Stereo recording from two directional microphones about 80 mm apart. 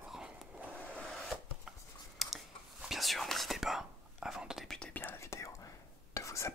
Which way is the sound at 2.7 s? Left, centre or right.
Centre.